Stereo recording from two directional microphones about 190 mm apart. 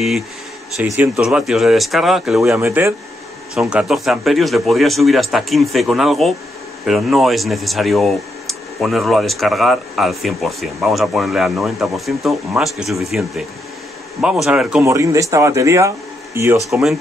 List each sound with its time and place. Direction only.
0.8 s speech: 10° right (ahead or behind)
14.9 s speech: 15° right (ahead or behind)